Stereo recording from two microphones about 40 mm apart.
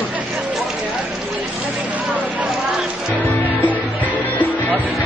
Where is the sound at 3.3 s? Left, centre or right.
Left.